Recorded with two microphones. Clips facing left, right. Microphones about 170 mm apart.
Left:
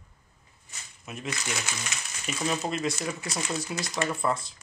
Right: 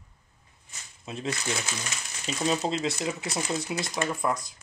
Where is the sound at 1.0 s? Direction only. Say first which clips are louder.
Right 3 dB; 30° right (ahead or behind).